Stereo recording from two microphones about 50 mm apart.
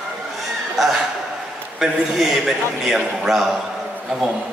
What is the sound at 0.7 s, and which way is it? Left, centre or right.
A man's voice, centre.